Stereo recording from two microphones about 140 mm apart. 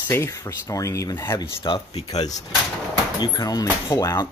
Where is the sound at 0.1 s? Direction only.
20° left (ahead or behind).